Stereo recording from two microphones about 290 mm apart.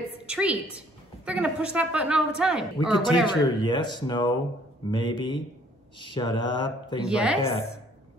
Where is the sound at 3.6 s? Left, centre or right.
Centre.